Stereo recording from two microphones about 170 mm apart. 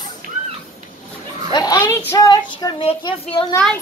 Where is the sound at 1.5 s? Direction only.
25° left (ahead or behind).